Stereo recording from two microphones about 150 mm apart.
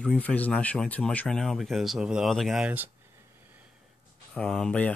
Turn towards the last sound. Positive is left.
turn(degrees=10)  # may be behind; listen again after turning